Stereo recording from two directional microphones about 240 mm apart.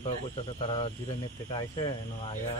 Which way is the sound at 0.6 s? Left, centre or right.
Left.